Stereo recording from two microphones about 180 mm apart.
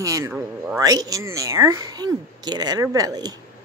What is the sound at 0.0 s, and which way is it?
Speech, 20° right (ahead or behind).